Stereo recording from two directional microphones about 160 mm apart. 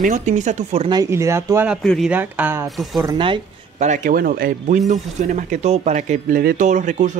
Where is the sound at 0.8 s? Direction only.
25° right (ahead or behind).